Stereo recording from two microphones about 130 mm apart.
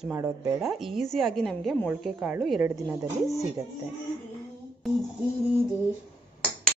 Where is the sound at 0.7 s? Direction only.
Centre (ahead or behind).